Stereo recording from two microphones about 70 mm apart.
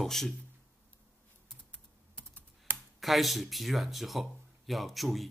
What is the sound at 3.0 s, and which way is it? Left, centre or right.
Speech, centre.